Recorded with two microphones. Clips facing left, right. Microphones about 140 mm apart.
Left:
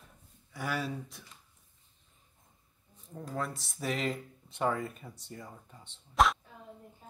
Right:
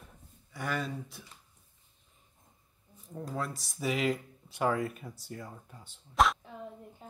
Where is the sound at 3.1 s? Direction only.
Centre (ahead or behind).